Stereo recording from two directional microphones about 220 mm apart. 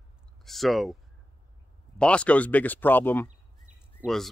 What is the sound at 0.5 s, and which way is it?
Speech, centre (ahead or behind).